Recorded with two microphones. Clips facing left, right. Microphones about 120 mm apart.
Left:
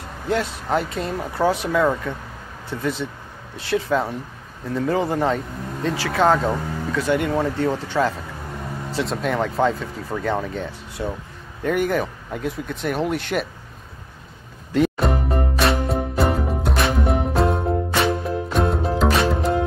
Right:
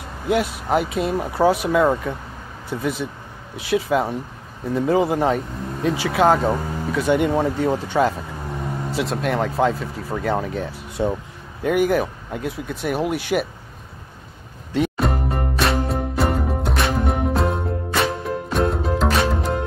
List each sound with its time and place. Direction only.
0.3 s speech: 10° right (ahead or behind)
11.0 s speech: 20° right (ahead or behind)
11.6 s speech: 5° right (ahead or behind)
14.7 s music: centre (ahead or behind)